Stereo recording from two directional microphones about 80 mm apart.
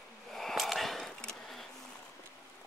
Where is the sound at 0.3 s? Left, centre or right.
Centre.